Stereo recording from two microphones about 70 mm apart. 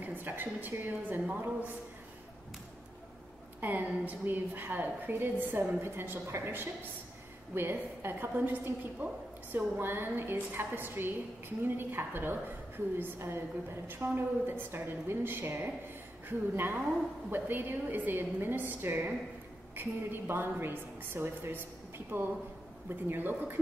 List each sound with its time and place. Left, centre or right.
0.0 s a woman's voice: right
3.6 s a woman's voice: right